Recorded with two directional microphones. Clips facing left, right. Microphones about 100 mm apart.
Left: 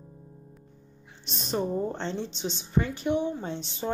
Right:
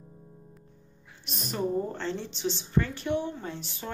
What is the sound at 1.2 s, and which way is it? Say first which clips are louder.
A woman's voice: left 2 dB; 25° left (ahead or behind).